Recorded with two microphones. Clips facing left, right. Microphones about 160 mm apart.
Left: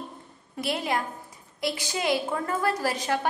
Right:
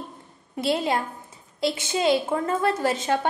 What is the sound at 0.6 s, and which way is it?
A woman's voice, 25° right (ahead or behind).